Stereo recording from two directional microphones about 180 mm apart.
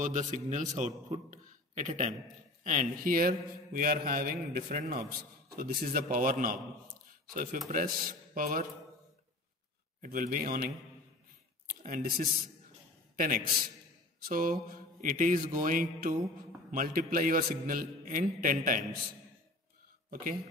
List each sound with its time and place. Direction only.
0.0 s a man's voice: 45° right (ahead or behind)
7.6 s a man's voice: 50° right (ahead or behind)
10.0 s a man's voice: 50° right (ahead or behind)
11.8 s a man's voice: 50° right (ahead or behind)